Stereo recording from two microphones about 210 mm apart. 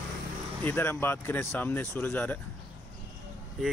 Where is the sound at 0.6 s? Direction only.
10° left (ahead or behind).